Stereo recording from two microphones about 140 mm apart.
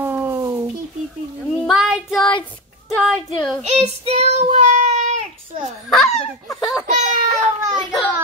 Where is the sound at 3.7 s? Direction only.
50° right (ahead or behind).